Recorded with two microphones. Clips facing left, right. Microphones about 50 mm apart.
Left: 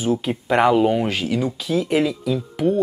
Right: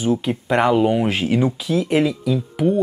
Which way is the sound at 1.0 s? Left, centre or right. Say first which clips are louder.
Right 3 dB; right.